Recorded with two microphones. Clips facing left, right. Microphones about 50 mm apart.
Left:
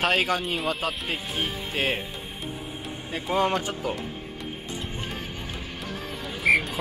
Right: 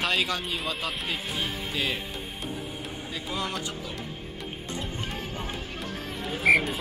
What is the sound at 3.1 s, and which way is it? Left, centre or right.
Speech, left.